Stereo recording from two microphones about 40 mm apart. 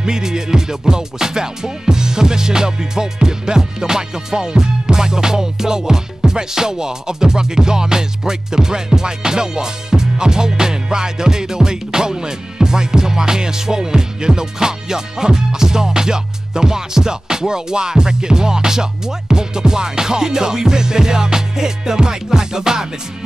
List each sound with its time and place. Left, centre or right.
0.0 s music: centre